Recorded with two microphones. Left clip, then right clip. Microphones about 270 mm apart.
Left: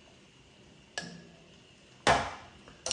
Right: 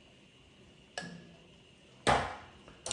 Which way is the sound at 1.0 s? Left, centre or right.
Centre.